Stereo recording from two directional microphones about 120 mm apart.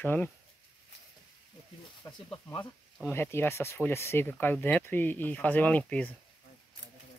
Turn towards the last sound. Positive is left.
turn(degrees=10)  # may be behind; listen again after turning